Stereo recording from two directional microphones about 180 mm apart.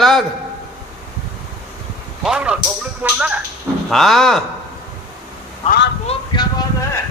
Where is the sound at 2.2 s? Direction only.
5° right (ahead or behind).